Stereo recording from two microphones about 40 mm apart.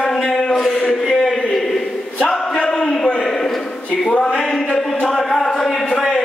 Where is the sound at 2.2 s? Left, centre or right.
Centre.